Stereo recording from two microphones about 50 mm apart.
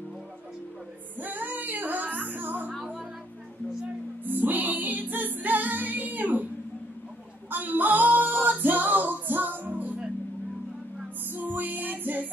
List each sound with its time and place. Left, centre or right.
1.2 s music: right
4.2 s music: right
7.5 s music: right
11.3 s music: right